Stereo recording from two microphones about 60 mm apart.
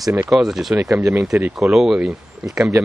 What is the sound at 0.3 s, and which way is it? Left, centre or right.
Speech, centre.